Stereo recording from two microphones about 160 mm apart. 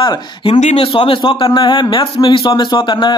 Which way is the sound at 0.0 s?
30° left (ahead or behind).